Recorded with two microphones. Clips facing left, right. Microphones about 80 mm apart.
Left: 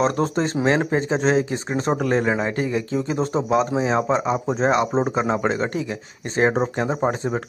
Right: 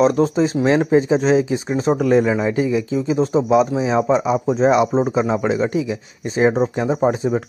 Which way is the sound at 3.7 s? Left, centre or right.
Left.